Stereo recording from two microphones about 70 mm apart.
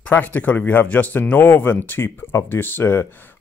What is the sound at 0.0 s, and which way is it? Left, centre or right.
Speech, left.